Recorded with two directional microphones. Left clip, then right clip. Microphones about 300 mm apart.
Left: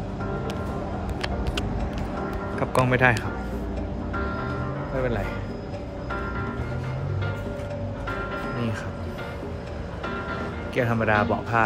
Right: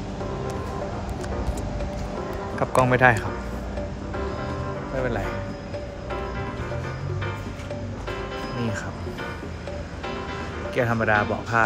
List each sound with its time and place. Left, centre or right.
2.6 s speech: centre
4.9 s speech: centre
10.8 s speech: centre